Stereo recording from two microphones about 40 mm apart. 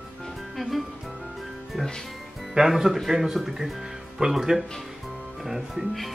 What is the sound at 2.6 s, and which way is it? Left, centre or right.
Speech, centre.